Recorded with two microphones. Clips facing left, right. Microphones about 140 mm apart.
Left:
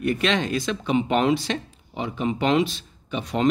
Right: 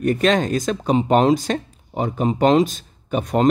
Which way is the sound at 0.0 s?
45° right (ahead or behind).